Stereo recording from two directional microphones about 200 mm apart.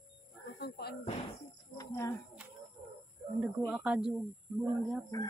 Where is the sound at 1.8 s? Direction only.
15° left (ahead or behind).